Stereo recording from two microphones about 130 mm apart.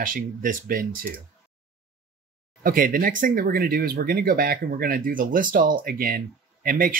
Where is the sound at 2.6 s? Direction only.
90° right.